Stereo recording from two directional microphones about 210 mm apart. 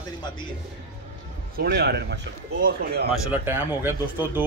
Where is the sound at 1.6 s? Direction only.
50° right (ahead or behind).